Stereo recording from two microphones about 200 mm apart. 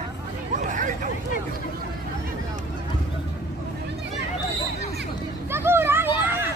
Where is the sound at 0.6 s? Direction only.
40° right (ahead or behind).